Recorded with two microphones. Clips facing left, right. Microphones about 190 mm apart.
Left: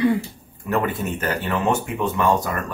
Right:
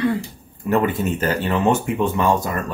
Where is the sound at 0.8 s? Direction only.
25° right (ahead or behind).